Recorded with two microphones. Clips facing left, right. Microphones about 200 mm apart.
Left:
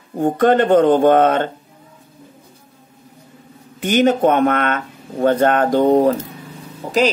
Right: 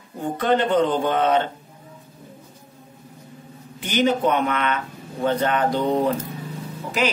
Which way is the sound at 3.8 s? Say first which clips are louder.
Left 6 dB; 50° left (ahead or behind).